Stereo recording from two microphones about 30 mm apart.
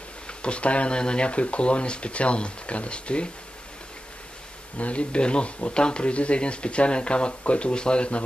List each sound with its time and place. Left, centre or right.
0.3 s speech: left
0.9 s speech: left
4.7 s speech: left